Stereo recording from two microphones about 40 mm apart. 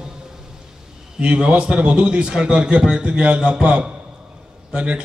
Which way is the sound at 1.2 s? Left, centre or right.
Right.